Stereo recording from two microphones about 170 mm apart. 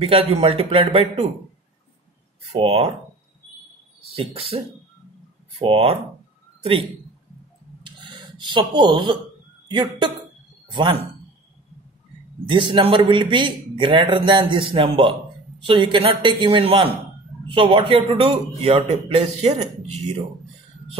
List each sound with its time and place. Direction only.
0.0 s a man's voice: 35° right (ahead or behind)
2.5 s a man's voice: 35° right (ahead or behind)
4.1 s a man's voice: 35° right (ahead or behind)
5.6 s a man's voice: 35° right (ahead or behind)
7.8 s a sound: 25° right (ahead or behind)
9.7 s a man's voice: 25° right (ahead or behind)
12.4 s a man's voice: 30° right (ahead or behind)